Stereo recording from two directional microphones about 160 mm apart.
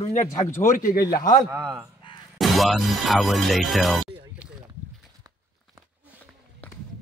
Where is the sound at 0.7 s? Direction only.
55° left (ahead or behind).